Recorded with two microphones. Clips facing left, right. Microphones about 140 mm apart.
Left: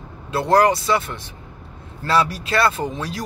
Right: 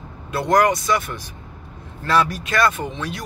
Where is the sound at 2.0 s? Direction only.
30° left (ahead or behind).